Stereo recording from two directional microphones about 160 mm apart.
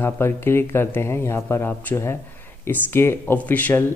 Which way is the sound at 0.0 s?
15° left (ahead or behind).